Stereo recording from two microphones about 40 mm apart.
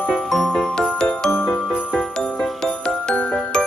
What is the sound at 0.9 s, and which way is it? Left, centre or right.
Music, centre.